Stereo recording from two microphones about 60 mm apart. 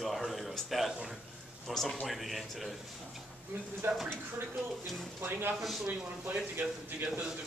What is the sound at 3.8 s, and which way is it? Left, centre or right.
Speech, right.